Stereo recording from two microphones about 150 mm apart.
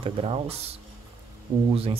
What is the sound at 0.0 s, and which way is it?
Speech, 40° right (ahead or behind).